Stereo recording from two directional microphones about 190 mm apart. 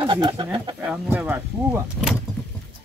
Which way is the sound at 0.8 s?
5° right (ahead or behind).